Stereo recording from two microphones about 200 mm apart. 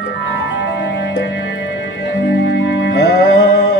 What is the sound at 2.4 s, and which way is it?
Music, 60° left (ahead or behind).